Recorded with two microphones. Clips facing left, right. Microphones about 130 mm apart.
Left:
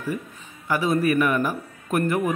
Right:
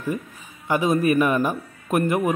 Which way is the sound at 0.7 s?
20° right (ahead or behind).